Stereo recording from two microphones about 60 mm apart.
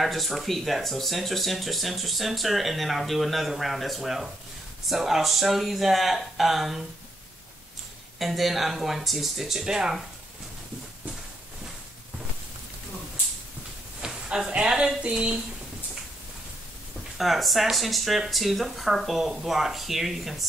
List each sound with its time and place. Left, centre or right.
0.0 s speech: centre
8.2 s speech: centre
14.0 s speech: centre
17.2 s speech: centre